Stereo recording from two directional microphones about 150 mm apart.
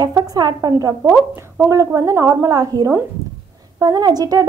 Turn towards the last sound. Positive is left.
turn(degrees=-25)  # may be behind; listen again after turning